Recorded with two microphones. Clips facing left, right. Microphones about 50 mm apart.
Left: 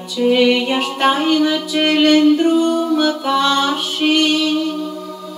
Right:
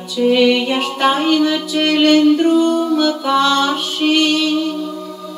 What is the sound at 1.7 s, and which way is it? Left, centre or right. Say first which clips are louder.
Mantra: even; left.